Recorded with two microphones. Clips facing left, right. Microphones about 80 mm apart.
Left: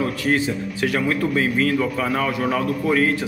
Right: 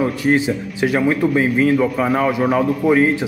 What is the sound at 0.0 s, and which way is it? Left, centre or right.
A man's voice, centre.